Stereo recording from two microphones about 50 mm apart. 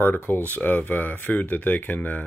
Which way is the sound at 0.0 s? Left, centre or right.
Left.